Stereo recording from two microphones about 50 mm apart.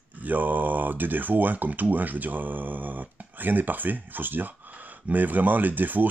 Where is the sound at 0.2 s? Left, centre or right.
Right.